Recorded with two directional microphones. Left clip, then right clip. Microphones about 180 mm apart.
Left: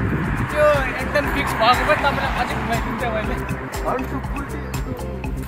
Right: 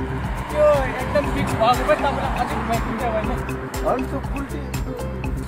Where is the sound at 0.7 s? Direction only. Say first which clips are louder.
Even; centre (ahead or behind).